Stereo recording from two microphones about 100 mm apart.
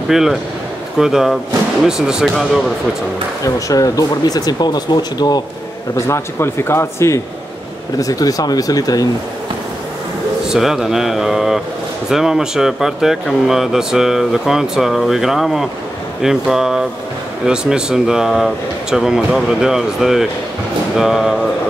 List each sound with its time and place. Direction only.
0.1 s speech: 5° right (ahead or behind)
3.4 s speech: 35° left (ahead or behind)
5.9 s a man's voice: 30° left (ahead or behind)
8.0 s speech: 40° left (ahead or behind)
10.5 s speech: 5° right (ahead or behind)